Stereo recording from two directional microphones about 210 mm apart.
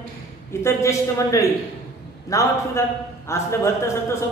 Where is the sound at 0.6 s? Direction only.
15° left (ahead or behind).